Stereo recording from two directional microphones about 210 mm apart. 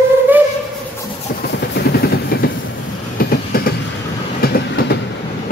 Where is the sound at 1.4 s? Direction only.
50° left (ahead or behind).